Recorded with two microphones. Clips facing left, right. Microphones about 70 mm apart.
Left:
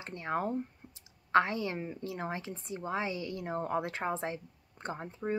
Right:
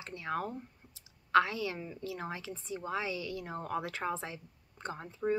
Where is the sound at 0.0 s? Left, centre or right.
Left.